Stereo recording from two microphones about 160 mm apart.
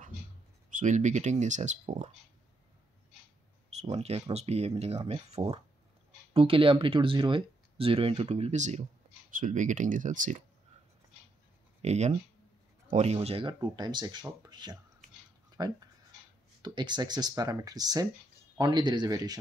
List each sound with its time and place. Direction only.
0.7 s speech: 50° right (ahead or behind)
3.7 s speech: 40° right (ahead or behind)
11.8 s speech: 45° right (ahead or behind); by 19.3 s 25° right (ahead or behind)